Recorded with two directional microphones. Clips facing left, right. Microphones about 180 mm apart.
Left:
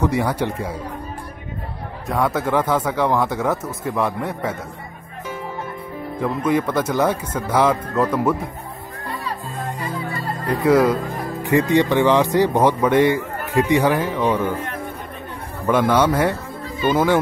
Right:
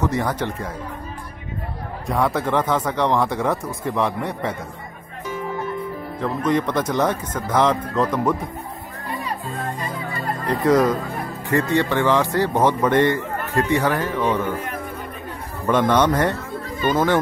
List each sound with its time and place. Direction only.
0.0 s speech: 10° left (ahead or behind)
2.0 s speech: centre (ahead or behind)
6.2 s speech: 10° left (ahead or behind)
10.6 s speech: 10° left (ahead or behind)
15.6 s speech: 10° left (ahead or behind)